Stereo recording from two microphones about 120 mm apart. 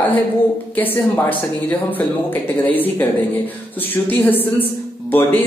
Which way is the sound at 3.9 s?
15° left (ahead or behind).